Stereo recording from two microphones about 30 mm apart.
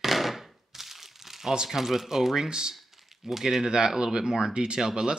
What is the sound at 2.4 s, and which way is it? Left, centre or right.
Speech, right.